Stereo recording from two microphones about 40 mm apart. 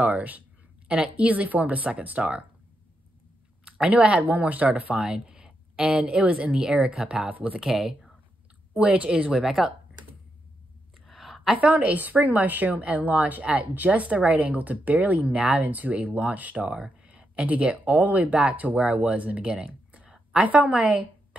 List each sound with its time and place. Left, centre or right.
0.0 s a woman's voice: right
0.8 s speech: right
3.6 s speech: right
4.9 s a woman's voice: right
7.2 s speech: right
7.6 s speech: centre
8.7 s speech: right
11.1 s a sound: centre
11.5 s a woman's voice: right
16.7 s speech: right
19.4 s a sound: right
20.4 s a woman's voice: right